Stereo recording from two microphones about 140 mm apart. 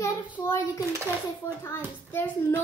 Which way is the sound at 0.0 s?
20° left (ahead or behind).